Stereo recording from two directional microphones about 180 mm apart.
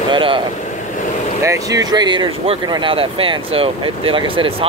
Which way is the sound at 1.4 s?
20° right (ahead or behind).